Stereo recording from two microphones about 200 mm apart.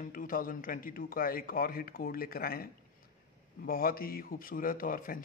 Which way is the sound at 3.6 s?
45° left (ahead or behind).